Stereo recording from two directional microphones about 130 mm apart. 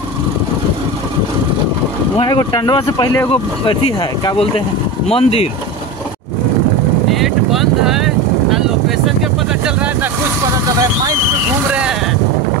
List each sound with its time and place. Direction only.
2.2 s speech: 35° left (ahead or behind)
5.0 s speech: 50° left (ahead or behind)
7.1 s vehicle: centre (ahead or behind)